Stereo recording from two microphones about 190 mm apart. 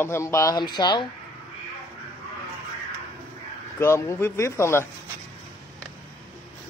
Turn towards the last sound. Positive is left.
turn(degrees=15)  # may be behind; listen again after turning